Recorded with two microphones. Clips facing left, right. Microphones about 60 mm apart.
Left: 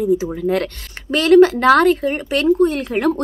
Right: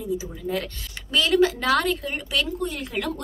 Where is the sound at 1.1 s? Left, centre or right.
Left.